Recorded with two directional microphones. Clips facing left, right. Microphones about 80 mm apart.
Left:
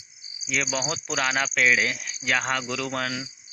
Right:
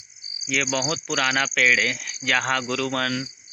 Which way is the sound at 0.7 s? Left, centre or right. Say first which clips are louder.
Right 3 dB; left.